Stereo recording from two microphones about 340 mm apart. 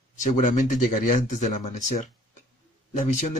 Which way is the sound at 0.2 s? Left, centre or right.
Left.